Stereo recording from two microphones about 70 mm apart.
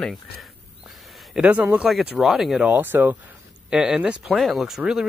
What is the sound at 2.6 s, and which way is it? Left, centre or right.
Speech, right.